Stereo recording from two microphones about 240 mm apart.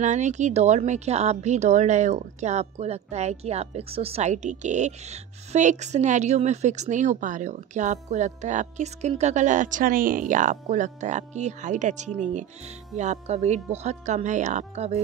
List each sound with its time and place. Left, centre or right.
0.0 s speech: right